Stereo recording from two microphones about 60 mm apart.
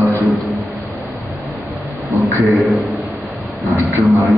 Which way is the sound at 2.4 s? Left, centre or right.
Centre.